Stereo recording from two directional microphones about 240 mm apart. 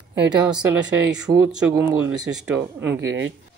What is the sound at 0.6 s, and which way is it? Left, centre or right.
Speech, centre.